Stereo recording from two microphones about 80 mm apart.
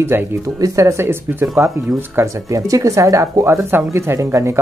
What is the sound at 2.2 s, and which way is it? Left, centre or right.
Speech, right.